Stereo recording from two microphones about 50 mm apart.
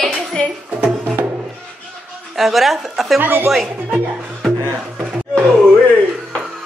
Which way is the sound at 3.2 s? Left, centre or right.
Right.